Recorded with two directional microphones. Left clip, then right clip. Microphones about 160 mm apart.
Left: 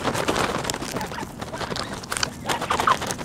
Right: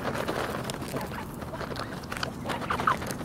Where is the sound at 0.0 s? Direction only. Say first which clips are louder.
Left 7 dB; 25° left (ahead or behind).